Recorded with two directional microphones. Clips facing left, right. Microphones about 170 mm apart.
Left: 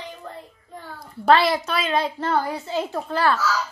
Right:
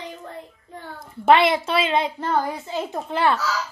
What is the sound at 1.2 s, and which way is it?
A woman's voice, 20° right (ahead or behind).